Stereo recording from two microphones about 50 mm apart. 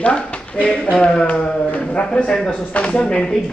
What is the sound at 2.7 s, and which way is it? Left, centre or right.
Speech, left.